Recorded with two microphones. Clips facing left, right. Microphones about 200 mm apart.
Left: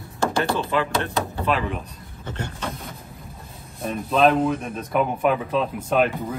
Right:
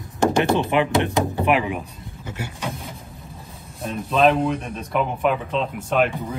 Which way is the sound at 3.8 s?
Centre (ahead or behind).